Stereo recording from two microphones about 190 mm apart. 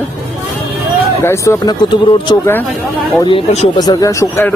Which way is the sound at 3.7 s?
20° left (ahead or behind).